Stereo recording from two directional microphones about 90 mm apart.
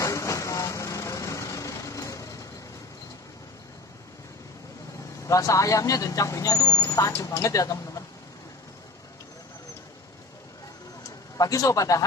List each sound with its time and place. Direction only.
0.0 s vehicle: 35° left (ahead or behind)
5.2 s speech: 40° left (ahead or behind)
11.1 s a man's voice: 40° left (ahead or behind)